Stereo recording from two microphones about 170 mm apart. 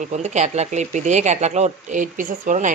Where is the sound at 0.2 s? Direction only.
40° right (ahead or behind).